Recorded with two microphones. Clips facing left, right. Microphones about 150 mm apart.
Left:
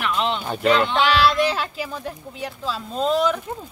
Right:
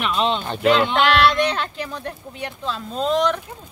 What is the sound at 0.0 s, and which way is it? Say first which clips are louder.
Speech: right 2 dB; 20° right (ahead or behind).